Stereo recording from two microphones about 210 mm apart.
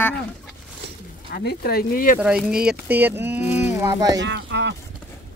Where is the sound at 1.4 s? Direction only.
50° left (ahead or behind).